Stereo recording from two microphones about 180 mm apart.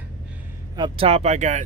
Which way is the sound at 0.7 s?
30° right (ahead or behind).